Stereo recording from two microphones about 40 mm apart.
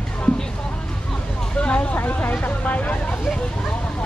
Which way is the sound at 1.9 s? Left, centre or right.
Left.